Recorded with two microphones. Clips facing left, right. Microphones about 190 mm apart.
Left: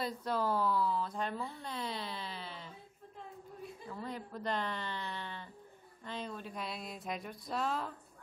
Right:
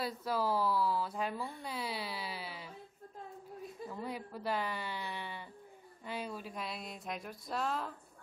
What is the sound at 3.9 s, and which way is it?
Speech, 10° right (ahead or behind).